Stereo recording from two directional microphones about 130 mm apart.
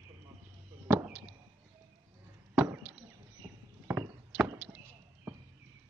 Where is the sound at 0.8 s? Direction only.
15° right (ahead or behind).